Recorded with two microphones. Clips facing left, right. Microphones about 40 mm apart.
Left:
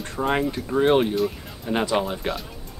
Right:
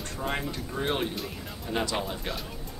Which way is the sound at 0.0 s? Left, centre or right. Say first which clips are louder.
Left 8 dB; left.